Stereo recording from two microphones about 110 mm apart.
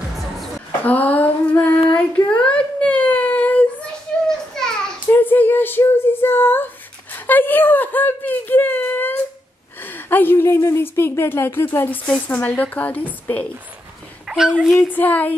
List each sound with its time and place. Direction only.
0.8 s female singing: 15° left (ahead or behind)
2.1 s a sound: 10° left (ahead or behind)
4.3 s children playing: 5° left (ahead or behind)
5.0 s a sound: 20° left (ahead or behind)
9.8 s a woman's voice: 20° left (ahead or behind)
14.2 s a child's voice: 5° right (ahead or behind)
14.8 s a woman's voice: 15° left (ahead or behind)